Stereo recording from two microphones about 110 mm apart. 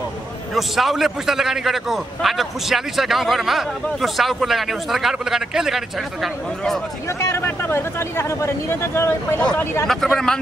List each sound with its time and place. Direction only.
0.6 s a man's voice: centre (ahead or behind)
7.2 s speech: 25° left (ahead or behind)
9.4 s a man's voice: 10° left (ahead or behind)